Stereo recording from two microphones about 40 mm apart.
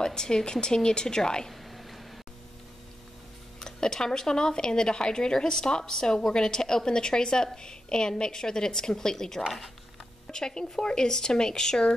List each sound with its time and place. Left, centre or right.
0.0 s speech: centre
1.5 s a sound: centre
3.6 s speech: centre